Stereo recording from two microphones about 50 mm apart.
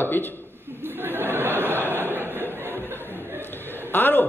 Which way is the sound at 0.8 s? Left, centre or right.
Right.